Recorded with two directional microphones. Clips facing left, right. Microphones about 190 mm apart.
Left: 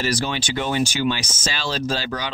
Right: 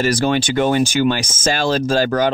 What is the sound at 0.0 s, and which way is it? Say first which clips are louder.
Speech: right 7 dB; 50° right (ahead or behind).